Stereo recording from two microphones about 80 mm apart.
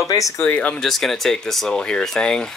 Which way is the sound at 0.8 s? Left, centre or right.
Centre.